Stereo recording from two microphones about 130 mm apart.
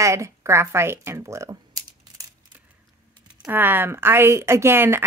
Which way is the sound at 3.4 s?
15° right (ahead or behind).